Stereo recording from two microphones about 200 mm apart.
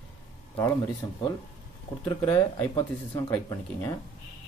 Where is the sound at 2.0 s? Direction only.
15° left (ahead or behind).